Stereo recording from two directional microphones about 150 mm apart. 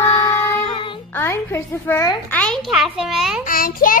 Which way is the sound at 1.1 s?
15° left (ahead or behind).